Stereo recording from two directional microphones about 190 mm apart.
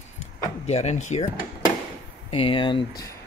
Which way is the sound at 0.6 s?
35° left (ahead or behind).